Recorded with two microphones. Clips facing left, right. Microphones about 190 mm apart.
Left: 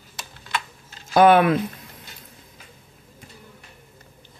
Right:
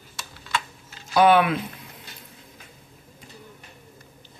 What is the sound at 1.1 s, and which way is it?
Speech, 45° left (ahead or behind).